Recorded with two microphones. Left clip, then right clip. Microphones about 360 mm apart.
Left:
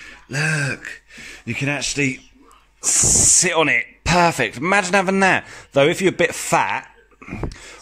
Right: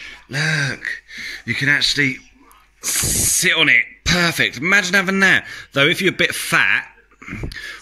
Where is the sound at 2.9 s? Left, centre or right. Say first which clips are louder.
Left 4 dB; left.